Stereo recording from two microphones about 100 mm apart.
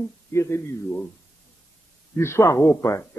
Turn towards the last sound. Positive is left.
turn(degrees=30)  # may be behind; listen again after turning